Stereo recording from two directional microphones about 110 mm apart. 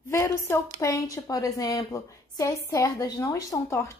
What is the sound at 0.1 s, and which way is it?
A woman's voice, 25° left (ahead or behind).